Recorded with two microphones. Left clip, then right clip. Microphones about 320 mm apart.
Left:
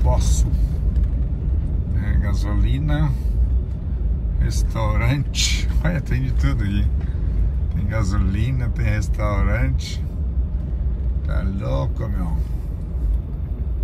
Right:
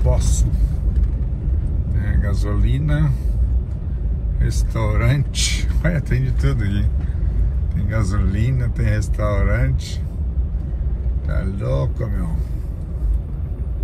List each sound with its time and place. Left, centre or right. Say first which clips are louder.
0.2 s vehicle: right 1 dB; centre
2.0 s vehicle: right 2 dB; centre
4.4 s speech: right 1 dB; centre
7.9 s speech: right 1 dB; centre
11.2 s speech: right 3 dB; centre